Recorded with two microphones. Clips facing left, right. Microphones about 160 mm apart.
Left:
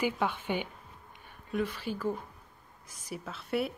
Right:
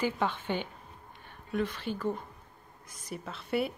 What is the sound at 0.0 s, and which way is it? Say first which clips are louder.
Speech: even; 10° left (ahead or behind).